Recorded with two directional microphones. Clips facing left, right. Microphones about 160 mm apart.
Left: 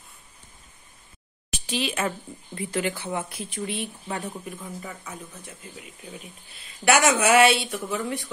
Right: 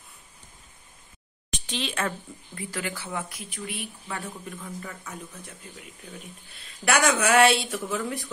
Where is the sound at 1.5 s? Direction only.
10° left (ahead or behind).